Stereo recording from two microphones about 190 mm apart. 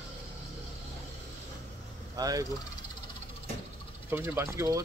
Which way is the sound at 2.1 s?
20° right (ahead or behind).